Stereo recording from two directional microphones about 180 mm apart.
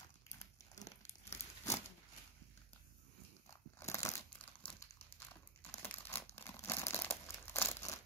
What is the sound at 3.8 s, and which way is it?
Crumpling, 15° left (ahead or behind).